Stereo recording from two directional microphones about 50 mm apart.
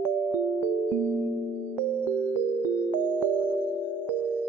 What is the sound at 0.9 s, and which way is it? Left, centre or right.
Music, right.